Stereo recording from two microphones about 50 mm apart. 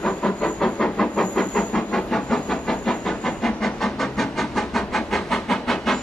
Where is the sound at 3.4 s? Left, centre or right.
Centre.